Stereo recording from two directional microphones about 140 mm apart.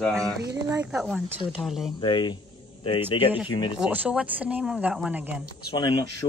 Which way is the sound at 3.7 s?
10° right (ahead or behind).